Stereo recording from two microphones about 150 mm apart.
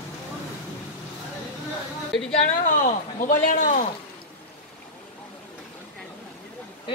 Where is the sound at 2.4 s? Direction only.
60° left (ahead or behind).